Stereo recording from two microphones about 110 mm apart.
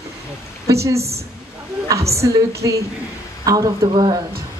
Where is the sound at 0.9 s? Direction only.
70° right (ahead or behind).